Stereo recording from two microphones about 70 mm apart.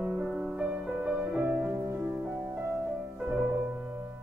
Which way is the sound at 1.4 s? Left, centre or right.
Right.